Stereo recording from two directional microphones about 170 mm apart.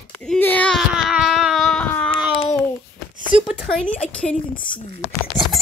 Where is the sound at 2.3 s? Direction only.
35° left (ahead or behind).